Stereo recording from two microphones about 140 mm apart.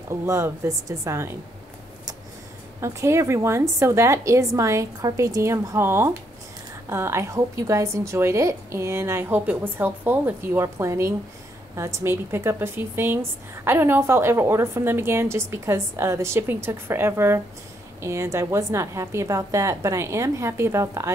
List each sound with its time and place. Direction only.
0.1 s a woman's voice: 20° right (ahead or behind)
2.8 s a woman's voice: 20° right (ahead or behind)